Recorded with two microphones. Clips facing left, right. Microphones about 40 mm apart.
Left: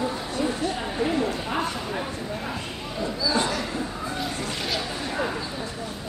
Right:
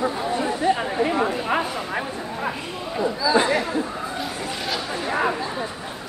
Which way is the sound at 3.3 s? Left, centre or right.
Right.